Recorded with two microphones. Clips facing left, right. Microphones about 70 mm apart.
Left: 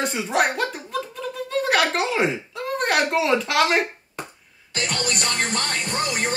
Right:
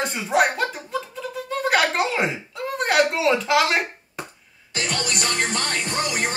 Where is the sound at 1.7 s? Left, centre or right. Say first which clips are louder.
Right 1 dB; centre.